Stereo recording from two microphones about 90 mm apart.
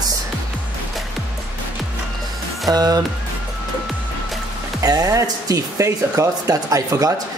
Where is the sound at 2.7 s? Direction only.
45° right (ahead or behind).